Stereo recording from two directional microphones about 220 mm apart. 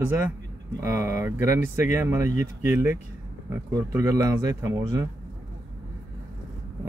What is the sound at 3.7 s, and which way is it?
Speech, 15° right (ahead or behind).